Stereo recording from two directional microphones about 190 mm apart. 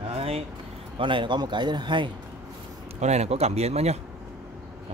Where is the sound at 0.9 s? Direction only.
25° right (ahead or behind).